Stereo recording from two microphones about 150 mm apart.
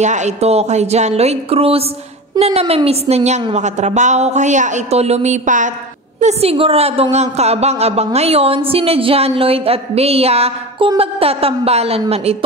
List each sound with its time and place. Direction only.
0.0 s a woman's voice: 50° right (ahead or behind)
6.1 s a woman's voice: 45° right (ahead or behind)